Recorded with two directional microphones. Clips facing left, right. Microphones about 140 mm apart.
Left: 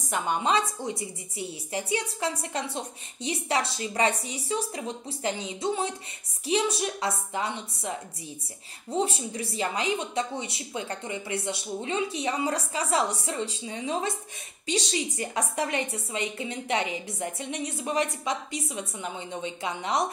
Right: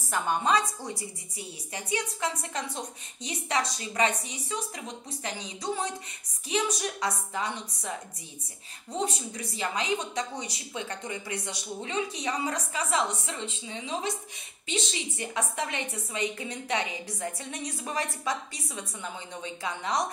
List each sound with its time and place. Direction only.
0.1 s a woman's voice: 20° left (ahead or behind)
8.9 s a woman's voice: 30° left (ahead or behind)